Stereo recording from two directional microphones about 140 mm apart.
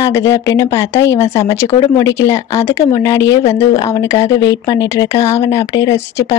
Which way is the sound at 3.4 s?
50° left (ahead or behind).